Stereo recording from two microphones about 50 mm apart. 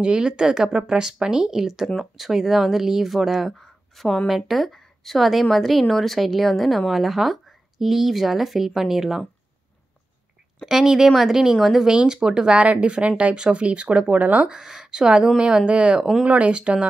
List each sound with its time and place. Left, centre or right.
0.0 s speech: centre
10.6 s speech: centre
11.9 s speech: centre
14.5 s speech: centre
16.0 s speech: centre
16.3 s speech: right